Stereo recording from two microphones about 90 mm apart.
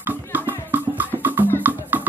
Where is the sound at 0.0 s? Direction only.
25° right (ahead or behind).